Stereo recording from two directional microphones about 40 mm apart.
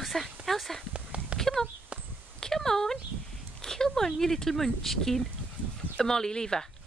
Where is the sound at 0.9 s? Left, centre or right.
Right.